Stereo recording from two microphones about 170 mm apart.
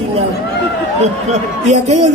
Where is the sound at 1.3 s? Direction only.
40° right (ahead or behind).